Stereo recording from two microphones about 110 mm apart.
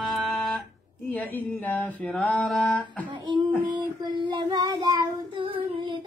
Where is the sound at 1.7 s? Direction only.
15° left (ahead or behind).